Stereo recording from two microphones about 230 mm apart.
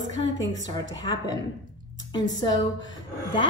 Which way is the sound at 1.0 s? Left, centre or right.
Centre.